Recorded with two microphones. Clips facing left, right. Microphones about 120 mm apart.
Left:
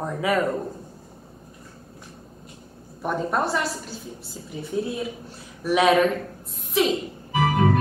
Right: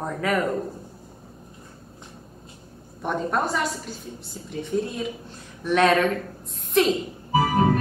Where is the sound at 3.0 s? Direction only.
5° left (ahead or behind).